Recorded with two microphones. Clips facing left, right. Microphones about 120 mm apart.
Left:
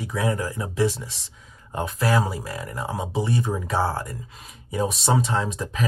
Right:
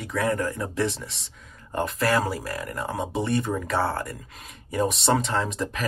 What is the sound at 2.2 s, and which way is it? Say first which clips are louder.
Speech: right 1 dB; 15° left (ahead or behind).